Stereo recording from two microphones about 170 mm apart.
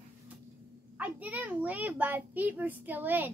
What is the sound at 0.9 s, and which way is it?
A woman's voice, 10° right (ahead or behind).